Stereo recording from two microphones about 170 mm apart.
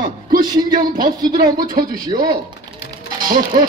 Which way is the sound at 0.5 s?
25° right (ahead or behind).